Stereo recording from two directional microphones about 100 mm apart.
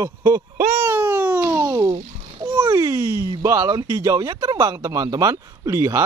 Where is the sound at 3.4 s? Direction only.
30° right (ahead or behind).